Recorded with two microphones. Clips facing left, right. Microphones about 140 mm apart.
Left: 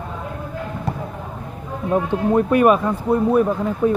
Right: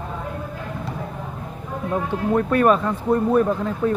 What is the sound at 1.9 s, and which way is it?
Speech, 20° left (ahead or behind).